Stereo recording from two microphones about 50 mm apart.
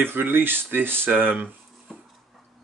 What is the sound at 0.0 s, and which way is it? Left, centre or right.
Speech, right.